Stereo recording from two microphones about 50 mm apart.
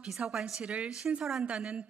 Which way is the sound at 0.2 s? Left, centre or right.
Centre.